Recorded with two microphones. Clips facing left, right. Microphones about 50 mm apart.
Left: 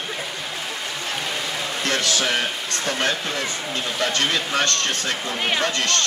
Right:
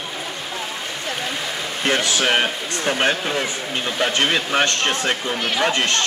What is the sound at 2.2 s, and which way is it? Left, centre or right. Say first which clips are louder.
Speech: right 4 dB; right.